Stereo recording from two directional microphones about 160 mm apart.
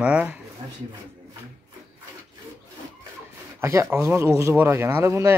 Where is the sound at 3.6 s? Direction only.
15° right (ahead or behind).